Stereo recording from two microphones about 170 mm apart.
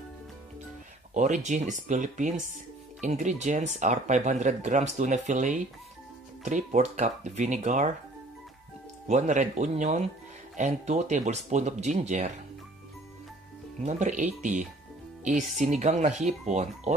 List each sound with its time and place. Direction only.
1.1 s speech: 45° right (ahead or behind)
9.0 s speech: 45° right (ahead or behind)
13.8 s speech: 45° right (ahead or behind)